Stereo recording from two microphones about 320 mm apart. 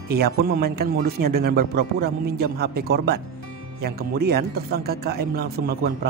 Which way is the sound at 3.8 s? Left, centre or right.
Right.